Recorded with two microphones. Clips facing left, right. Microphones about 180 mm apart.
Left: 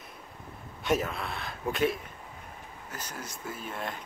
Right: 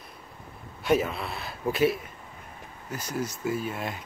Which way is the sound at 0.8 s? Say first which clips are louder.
Right 4 dB; centre (ahead or behind).